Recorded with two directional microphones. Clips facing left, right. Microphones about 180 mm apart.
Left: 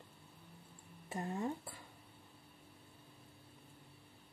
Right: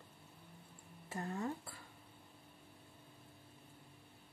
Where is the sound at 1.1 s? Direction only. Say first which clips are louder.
Left 2 dB; 20° left (ahead or behind).